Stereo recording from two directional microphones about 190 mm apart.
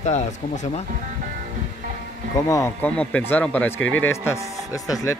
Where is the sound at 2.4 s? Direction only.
15° left (ahead or behind).